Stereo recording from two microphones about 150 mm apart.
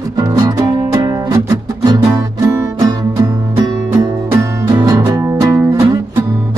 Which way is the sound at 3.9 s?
15° right (ahead or behind).